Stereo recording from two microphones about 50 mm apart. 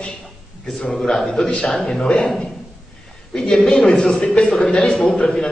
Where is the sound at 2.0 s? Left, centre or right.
Centre.